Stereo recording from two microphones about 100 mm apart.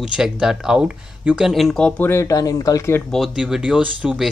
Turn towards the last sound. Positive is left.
turn(degrees=-15)  # may be behind; listen again after turning